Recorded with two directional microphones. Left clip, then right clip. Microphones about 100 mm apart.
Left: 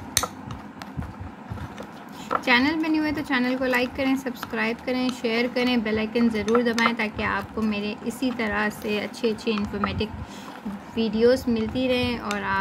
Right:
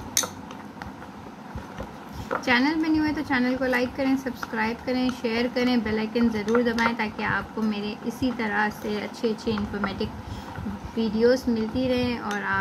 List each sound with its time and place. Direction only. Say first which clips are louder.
2.4 s speech: left 1 dB; 90° left